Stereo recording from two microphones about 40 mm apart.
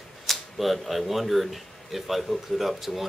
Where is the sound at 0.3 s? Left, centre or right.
Centre.